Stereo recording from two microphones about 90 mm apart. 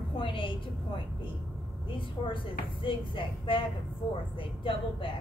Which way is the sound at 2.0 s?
70° left (ahead or behind).